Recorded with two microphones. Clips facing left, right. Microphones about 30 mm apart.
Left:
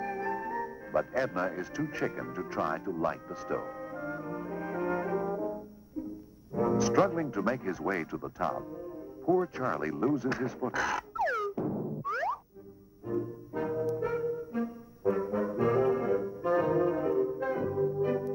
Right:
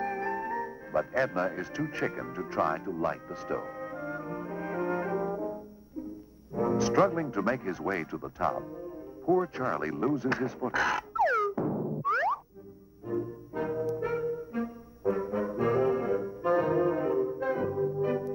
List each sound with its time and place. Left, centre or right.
0.0 s music: centre
6.5 s brass instrument: centre
7.0 s speech: centre
10.7 s music: centre
15.0 s brass instrument: centre